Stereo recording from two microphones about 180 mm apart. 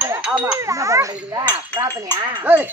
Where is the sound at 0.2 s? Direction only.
5° right (ahead or behind).